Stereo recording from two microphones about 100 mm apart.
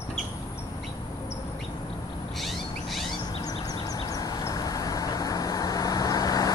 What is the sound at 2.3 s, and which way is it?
Cat, centre (ahead or behind).